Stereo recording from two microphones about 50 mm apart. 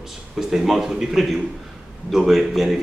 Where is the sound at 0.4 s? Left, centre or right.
Centre.